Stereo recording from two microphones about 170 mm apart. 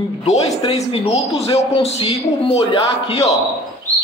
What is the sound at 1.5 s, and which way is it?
A man's voice, 35° left (ahead or behind).